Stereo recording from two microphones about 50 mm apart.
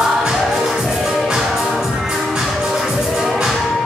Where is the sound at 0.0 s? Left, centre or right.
Centre.